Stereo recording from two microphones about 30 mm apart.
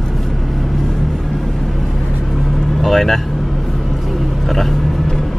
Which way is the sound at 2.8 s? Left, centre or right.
Centre.